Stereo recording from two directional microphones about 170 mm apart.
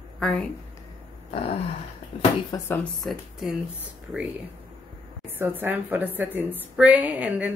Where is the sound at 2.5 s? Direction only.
25° left (ahead or behind).